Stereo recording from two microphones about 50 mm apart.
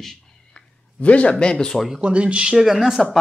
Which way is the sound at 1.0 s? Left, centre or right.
Left.